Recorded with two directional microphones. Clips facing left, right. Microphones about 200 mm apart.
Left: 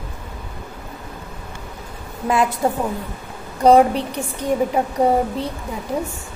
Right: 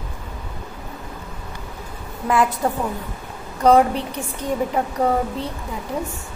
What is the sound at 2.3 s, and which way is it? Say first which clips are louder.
A woman's voice: left 1 dB; 25° left (ahead or behind).